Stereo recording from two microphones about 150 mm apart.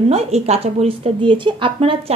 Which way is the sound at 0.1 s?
45° right (ahead or behind).